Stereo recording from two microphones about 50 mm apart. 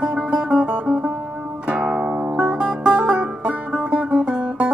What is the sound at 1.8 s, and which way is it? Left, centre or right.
Music, centre.